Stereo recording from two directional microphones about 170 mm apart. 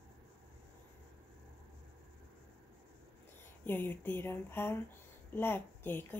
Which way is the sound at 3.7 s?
10° left (ahead or behind).